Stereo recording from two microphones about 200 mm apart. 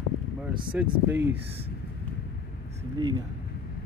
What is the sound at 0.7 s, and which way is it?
Speech, 10° right (ahead or behind).